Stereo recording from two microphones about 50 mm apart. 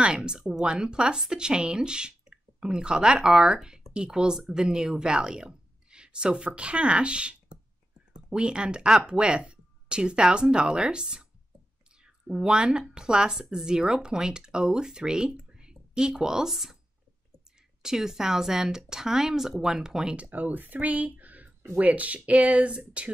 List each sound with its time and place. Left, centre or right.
0.0 s speech: centre
17.8 s speech: centre
20.2 s speech: right